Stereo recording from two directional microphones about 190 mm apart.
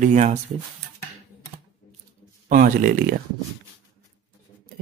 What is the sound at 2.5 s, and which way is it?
Speech, 50° right (ahead or behind).